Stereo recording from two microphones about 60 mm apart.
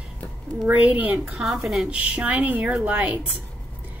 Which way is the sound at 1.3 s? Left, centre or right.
Centre.